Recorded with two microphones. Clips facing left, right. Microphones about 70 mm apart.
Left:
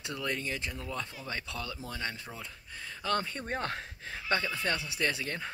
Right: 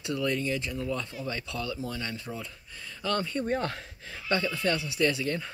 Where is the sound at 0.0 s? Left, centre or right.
Left.